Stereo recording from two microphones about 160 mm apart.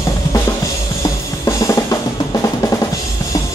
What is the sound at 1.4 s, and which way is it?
Drum kit, 20° left (ahead or behind).